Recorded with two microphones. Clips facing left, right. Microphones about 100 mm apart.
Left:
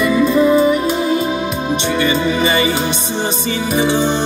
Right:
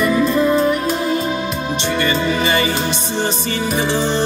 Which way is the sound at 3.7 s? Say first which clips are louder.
Left 4 dB; 5° left (ahead or behind).